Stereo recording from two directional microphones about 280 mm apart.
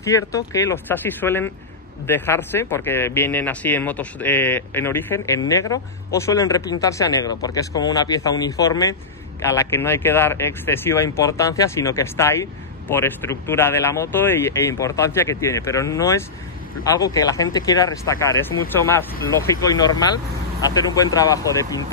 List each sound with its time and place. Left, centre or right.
0.0 s speech: centre
18.3 s speech: left
18.7 s speech: centre